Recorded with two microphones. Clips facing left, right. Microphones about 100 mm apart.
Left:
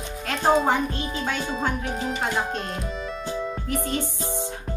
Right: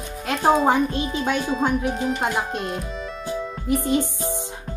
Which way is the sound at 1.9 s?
Centre (ahead or behind).